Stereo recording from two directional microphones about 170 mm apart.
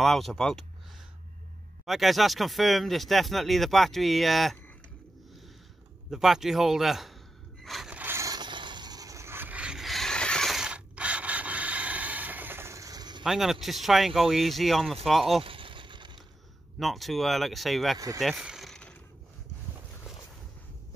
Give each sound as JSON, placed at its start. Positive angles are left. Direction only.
{"t": 0.0, "sound": "speech", "side_deg": 0}
{"t": 1.9, "sound": "speech", "side_deg": 0}
{"t": 6.0, "sound": "speech", "side_deg": 0}
{"t": 7.6, "sound": "scrape", "side_deg": 0}
{"t": 13.2, "sound": "speech", "side_deg": 0}
{"t": 15.4, "sound": "vehicle", "side_deg": -30}
{"t": 16.8, "sound": "speech", "side_deg": 0}
{"t": 17.9, "sound": "speech", "side_deg": -20}
{"t": 18.2, "sound": "a sound", "side_deg": -5}